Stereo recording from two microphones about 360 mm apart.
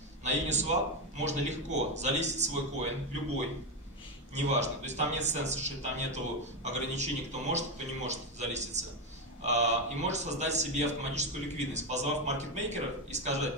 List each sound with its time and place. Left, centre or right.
0.2 s a man's voice: centre
4.5 s a man's voice: centre